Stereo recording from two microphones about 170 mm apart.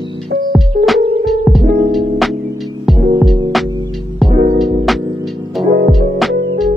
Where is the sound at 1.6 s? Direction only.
55° right (ahead or behind).